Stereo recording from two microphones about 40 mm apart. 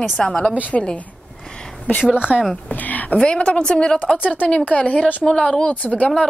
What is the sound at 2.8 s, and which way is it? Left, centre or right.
Speech, left.